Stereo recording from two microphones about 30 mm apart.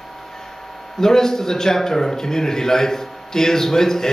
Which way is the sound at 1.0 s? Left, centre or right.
Centre.